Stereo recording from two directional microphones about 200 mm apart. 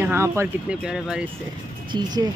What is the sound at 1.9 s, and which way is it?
Speech, 20° right (ahead or behind).